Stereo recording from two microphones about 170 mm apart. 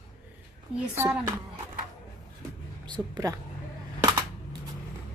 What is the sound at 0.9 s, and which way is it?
Speech, 15° right (ahead or behind).